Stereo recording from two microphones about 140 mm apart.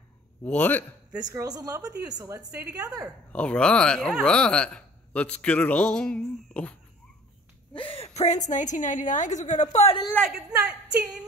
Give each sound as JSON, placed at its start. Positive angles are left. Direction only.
{"t": 0.5, "sound": "speech", "side_deg": 10}
{"t": 1.1, "sound": "a woman's voice", "side_deg": -25}
{"t": 1.8, "sound": "a woman's voice", "side_deg": -10}
{"t": 2.1, "sound": "a woman's voice", "side_deg": -20}
{"t": 3.3, "sound": "speech", "side_deg": 10}
{"t": 7.7, "sound": "a woman's voice", "side_deg": 40}
{"t": 10.1, "sound": "a man's voice", "side_deg": 0}